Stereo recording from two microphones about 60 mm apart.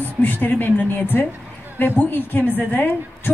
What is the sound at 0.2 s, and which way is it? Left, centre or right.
A woman's voice, left.